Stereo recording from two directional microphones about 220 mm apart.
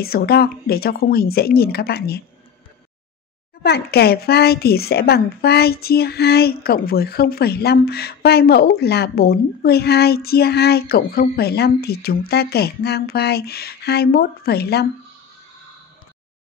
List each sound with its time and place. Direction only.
0.0 s speech: 45° left (ahead or behind)
3.6 s speech: 45° left (ahead or behind)